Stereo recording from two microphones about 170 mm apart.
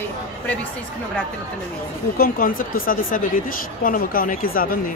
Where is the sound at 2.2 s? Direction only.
55° left (ahead or behind).